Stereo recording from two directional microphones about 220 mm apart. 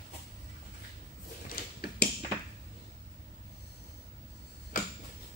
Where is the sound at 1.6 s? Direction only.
40° left (ahead or behind).